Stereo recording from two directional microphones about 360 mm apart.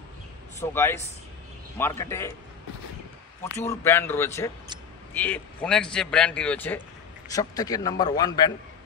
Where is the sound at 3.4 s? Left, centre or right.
Centre.